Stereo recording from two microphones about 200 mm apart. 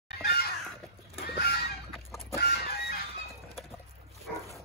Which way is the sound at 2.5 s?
50° left (ahead or behind).